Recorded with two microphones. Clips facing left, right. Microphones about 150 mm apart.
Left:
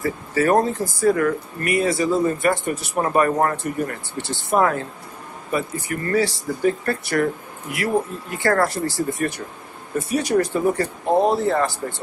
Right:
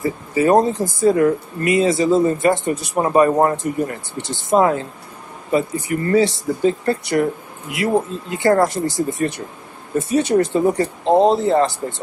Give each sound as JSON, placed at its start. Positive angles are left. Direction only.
{"t": 0.0, "sound": "speech", "side_deg": -15}